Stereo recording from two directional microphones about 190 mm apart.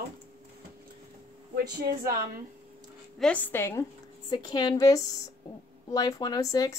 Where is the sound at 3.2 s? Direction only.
10° left (ahead or behind).